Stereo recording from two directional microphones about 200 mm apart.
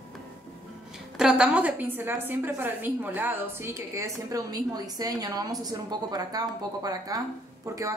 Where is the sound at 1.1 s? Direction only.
5° right (ahead or behind).